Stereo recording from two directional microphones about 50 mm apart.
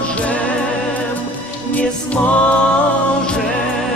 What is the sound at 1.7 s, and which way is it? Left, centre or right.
Music, left.